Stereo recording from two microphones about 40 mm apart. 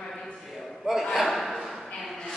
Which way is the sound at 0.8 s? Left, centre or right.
Centre.